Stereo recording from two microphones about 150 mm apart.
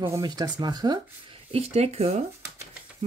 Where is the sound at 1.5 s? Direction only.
45° right (ahead or behind).